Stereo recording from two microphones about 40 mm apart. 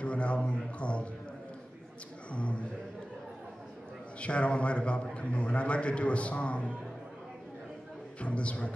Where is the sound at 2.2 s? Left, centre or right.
Left.